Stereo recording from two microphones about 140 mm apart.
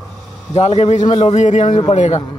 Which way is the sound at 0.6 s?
50° left (ahead or behind).